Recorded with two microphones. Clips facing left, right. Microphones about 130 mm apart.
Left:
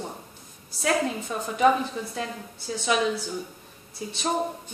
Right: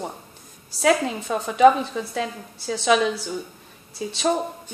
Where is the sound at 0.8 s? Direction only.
90° right.